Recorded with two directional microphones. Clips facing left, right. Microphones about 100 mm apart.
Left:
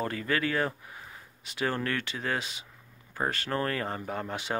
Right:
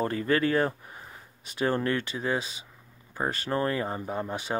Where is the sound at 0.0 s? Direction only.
30° right (ahead or behind).